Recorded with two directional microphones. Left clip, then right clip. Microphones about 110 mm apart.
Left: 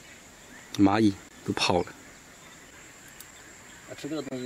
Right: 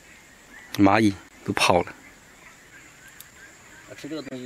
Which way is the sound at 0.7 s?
35° right (ahead or behind).